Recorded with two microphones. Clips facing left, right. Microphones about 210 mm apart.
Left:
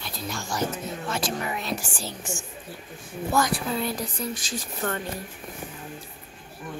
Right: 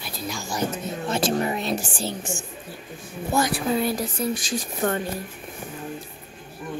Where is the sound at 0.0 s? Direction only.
5° right (ahead or behind).